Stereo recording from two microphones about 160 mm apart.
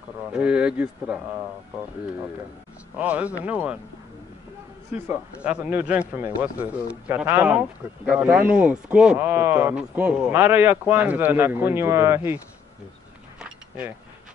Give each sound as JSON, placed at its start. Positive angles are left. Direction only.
{"t": 0.3, "sound": "speech", "side_deg": -10}
{"t": 3.0, "sound": "speech", "side_deg": -10}
{"t": 4.9, "sound": "speech", "side_deg": -10}